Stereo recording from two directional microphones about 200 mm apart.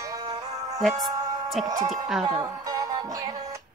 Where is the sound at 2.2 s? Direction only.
20° right (ahead or behind).